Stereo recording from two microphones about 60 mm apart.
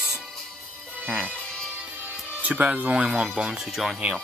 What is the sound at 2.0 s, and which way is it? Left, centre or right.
Music, right.